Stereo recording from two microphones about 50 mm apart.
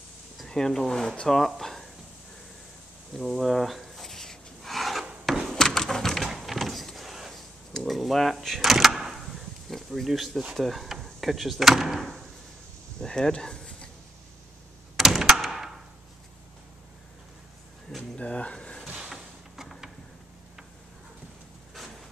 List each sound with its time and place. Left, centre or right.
0.5 s speech: centre
3.3 s rub: centre
5.2 s a sound: centre
5.5 s bird: centre
7.7 s speech: centre
8.5 s door: centre
9.8 s speech: centre
13.0 s speech: centre
15.0 s door: centre
18.1 s a sound: left
18.9 s a sound: centre